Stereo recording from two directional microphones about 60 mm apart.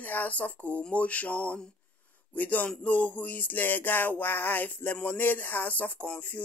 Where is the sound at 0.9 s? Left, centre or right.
Left.